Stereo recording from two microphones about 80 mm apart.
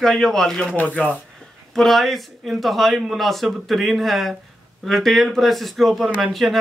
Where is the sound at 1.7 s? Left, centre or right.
Centre.